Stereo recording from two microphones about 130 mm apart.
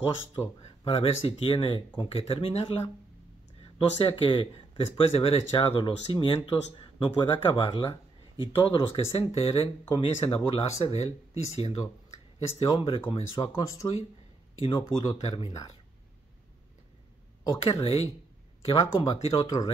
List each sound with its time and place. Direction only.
0.6 s speech: 50° left (ahead or behind)
5.5 s speech: 40° left (ahead or behind)
12.6 s speech: 40° left (ahead or behind)
13.6 s speech: 30° left (ahead or behind)
14.6 s speech: 45° left (ahead or behind)
17.5 s speech: 45° left (ahead or behind)
19.4 s speech: 30° left (ahead or behind)